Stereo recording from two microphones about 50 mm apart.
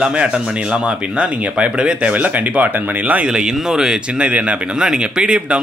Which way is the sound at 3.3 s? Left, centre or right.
Centre.